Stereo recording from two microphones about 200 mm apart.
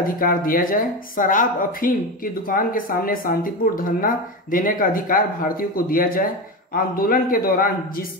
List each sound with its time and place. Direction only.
0.0 s speech: 45° left (ahead or behind)